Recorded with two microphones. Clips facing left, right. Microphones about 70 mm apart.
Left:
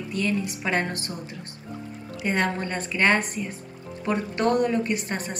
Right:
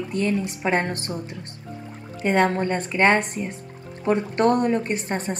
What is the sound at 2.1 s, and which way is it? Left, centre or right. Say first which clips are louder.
A woman's voice: right 5 dB; right.